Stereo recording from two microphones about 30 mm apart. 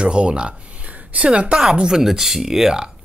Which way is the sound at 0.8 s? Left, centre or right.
Right.